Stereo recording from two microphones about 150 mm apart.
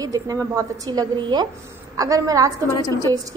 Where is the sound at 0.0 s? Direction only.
25° right (ahead or behind).